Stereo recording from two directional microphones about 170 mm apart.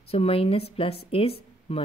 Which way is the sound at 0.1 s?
35° left (ahead or behind).